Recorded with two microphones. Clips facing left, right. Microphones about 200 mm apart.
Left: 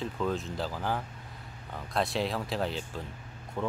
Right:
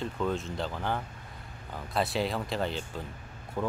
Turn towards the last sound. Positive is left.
turn(degrees=-5)  # may be behind; listen again after turning